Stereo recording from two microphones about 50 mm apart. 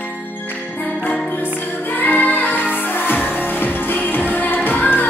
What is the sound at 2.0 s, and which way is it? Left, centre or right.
Music, left.